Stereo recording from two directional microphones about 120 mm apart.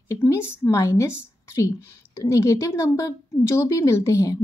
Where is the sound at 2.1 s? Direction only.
25° left (ahead or behind).